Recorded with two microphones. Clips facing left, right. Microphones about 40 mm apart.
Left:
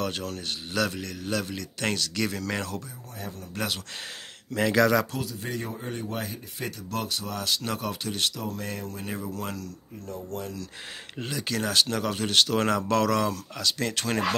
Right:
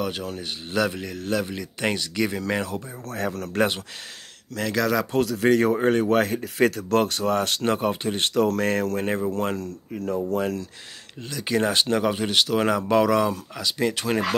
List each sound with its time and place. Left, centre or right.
0.0 s a man's voice: centre
3.2 s speech: right
3.5 s speech: right
4.6 s speech: centre
5.2 s speech: right
7.6 s speech: right
8.4 s speech: right
8.9 s speech: right
11.4 s a man's voice: centre